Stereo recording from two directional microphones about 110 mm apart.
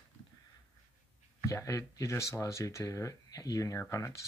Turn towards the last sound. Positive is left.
turn(degrees=25)  # may be behind; listen again after turning